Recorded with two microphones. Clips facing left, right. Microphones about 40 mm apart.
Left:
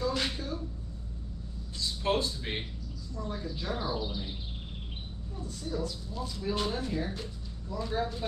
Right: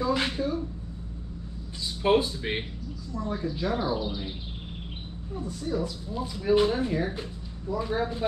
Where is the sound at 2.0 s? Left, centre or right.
Right.